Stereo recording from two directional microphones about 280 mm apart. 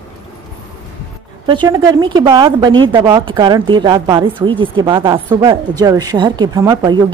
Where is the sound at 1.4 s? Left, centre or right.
Centre.